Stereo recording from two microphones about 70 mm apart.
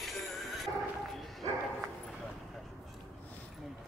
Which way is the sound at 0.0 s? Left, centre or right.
Centre.